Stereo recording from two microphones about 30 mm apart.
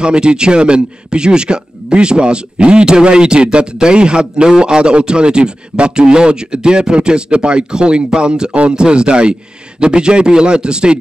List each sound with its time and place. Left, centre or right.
0.0 s speech: right